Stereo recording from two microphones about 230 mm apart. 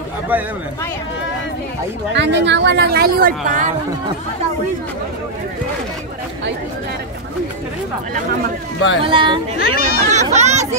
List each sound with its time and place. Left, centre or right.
0.3 s speech: centre
2.1 s speech: right
9.0 s speech: right
9.6 s speech: left
10.1 s chatter: right